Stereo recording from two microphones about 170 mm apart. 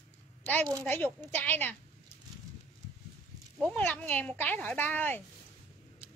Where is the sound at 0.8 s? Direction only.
10° left (ahead or behind).